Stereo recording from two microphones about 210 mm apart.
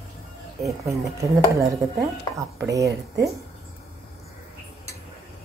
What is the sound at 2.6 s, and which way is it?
Speech, 15° right (ahead or behind).